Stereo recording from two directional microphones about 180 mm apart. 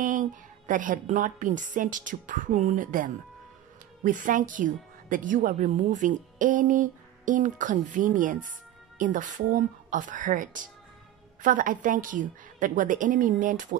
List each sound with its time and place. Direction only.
0.0 s speech: 45° right (ahead or behind)